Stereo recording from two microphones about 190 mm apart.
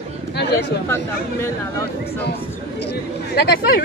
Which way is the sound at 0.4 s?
65° left (ahead or behind).